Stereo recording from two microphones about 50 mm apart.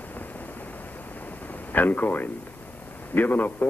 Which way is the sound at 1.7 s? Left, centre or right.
Left.